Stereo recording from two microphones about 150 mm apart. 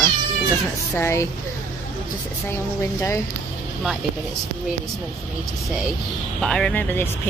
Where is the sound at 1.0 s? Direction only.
15° left (ahead or behind).